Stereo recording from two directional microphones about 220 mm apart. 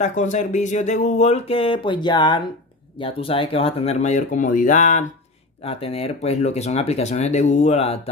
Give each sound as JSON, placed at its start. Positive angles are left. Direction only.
{"t": 0.0, "sound": "speech", "side_deg": 35}